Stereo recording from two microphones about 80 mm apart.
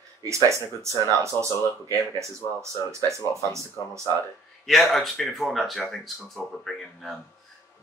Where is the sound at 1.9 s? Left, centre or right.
Right.